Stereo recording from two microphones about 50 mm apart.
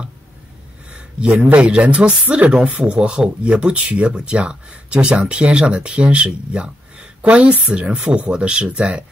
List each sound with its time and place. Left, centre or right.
1.2 s speech: right